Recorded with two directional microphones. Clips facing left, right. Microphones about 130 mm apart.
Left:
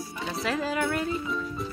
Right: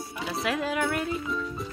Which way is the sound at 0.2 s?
Centre (ahead or behind).